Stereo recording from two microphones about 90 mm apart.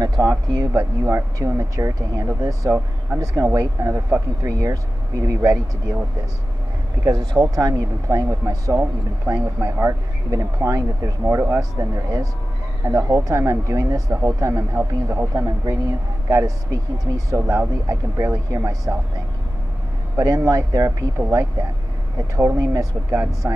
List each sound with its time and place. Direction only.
0.0 s speech: 50° right (ahead or behind)
0.7 s speech: 35° right (ahead or behind)
7.1 s speech: 45° right (ahead or behind)
11.2 s speech: 30° right (ahead or behind)
11.7 s speech: 45° right (ahead or behind)
20.2 s speech: 40° right (ahead or behind)